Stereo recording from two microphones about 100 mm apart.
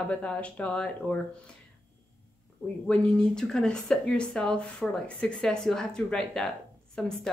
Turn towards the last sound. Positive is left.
turn(degrees=5)  # may be behind; listen again after turning